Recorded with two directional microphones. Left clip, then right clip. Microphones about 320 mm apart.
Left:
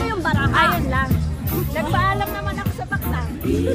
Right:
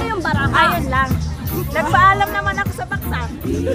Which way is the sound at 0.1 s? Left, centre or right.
Centre.